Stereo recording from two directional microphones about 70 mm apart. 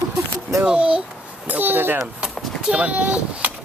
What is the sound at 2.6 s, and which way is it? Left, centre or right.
Speech, centre.